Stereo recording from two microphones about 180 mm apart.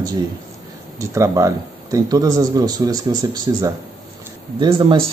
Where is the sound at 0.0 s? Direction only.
25° right (ahead or behind).